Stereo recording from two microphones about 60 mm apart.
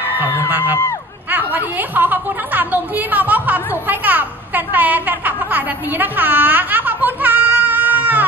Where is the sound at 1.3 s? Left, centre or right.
Right.